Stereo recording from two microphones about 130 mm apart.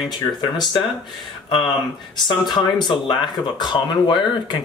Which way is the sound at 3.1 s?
35° left (ahead or behind).